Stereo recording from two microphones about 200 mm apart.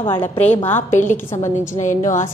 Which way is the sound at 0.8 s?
40° left (ahead or behind).